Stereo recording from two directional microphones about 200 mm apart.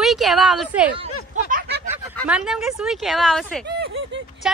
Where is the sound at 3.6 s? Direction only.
60° right (ahead or behind).